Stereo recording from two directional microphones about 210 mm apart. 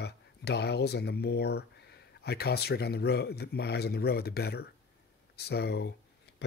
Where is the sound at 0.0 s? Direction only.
50° left (ahead or behind).